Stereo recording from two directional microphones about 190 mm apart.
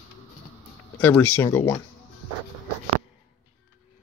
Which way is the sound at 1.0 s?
10° left (ahead or behind).